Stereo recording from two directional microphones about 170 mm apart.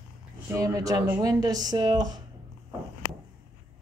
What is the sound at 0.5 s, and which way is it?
Speech, 20° right (ahead or behind).